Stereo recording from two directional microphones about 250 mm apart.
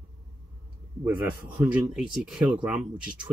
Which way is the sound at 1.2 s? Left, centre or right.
Centre.